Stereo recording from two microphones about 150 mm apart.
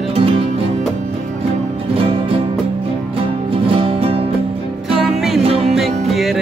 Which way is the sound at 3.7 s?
35° right (ahead or behind).